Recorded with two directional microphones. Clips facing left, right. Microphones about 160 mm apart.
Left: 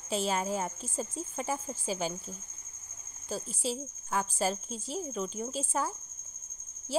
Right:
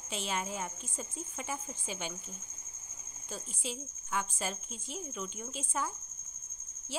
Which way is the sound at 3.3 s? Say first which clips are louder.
Left 7 dB; 35° left (ahead or behind).